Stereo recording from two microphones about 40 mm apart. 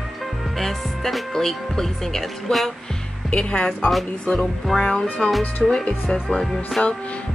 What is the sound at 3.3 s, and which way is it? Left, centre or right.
Speech, left.